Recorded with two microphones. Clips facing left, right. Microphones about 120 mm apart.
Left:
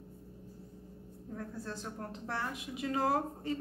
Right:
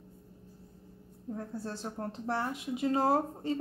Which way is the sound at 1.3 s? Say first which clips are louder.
Right 3 dB; 30° right (ahead or behind).